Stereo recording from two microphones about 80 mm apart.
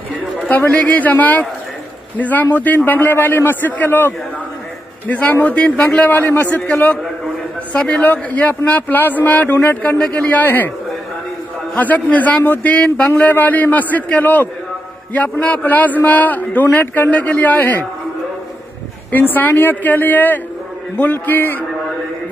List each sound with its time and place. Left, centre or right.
0.4 s a man's voice: centre
7.7 s a man's voice: centre
11.7 s a man's voice: centre
12.8 s speech: centre
13.1 s a man's voice: left
19.1 s a man's voice: left